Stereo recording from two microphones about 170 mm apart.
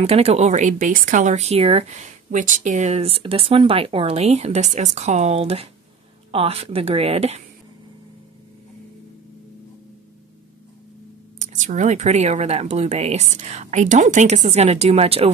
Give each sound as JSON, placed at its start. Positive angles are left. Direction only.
{"t": 0.0, "sound": "speech", "side_deg": -35}
{"t": 11.4, "sound": "speech", "side_deg": -45}